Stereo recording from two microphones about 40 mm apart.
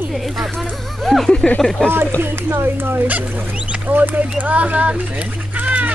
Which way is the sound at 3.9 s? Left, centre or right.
Right.